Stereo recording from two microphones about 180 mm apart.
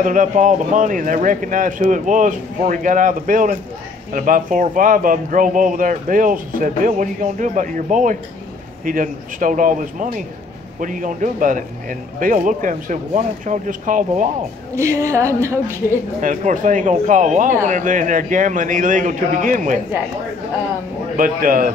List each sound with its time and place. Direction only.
0.0 s speech: 45° right (ahead or behind)
14.8 s speech: 15° right (ahead or behind)
16.2 s speech: 45° right (ahead or behind)
21.2 s speech: 50° right (ahead or behind)